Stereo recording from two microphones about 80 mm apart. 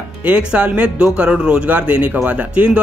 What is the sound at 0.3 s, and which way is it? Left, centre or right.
Speech, centre.